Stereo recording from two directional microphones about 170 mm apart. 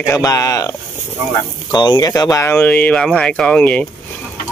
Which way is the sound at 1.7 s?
25° left (ahead or behind).